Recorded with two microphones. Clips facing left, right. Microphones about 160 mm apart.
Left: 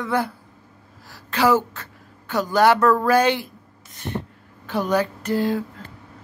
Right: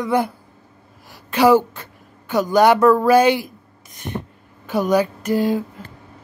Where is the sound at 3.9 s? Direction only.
15° right (ahead or behind).